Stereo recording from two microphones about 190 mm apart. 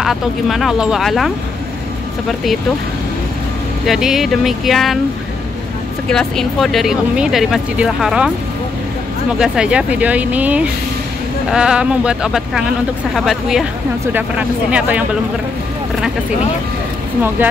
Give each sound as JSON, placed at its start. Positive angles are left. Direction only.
{"t": 0.0, "sound": "speech", "side_deg": 0}
{"t": 3.8, "sound": "speech", "side_deg": 0}
{"t": 6.0, "sound": "speech", "side_deg": 5}
{"t": 9.4, "sound": "speech", "side_deg": -5}